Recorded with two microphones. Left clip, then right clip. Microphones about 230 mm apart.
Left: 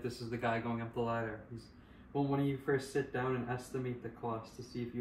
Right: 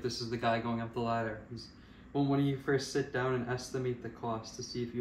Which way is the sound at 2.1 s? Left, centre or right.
Centre.